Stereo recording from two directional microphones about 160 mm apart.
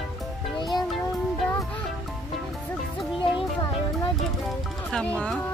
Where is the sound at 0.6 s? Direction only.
25° left (ahead or behind).